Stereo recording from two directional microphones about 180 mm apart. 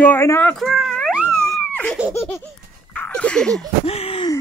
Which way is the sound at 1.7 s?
5° left (ahead or behind).